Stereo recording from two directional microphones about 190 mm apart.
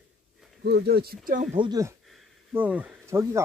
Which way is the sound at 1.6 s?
20° right (ahead or behind).